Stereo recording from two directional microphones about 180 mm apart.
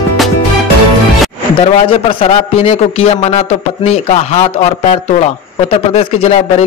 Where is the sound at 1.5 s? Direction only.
30° left (ahead or behind).